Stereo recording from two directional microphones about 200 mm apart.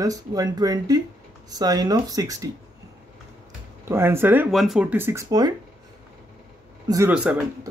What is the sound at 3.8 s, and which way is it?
Speech, 10° right (ahead or behind).